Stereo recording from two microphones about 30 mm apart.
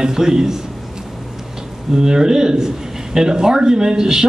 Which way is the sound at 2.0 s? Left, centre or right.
Right.